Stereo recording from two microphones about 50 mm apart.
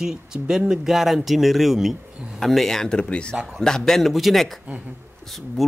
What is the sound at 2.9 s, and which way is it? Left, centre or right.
Speech, left.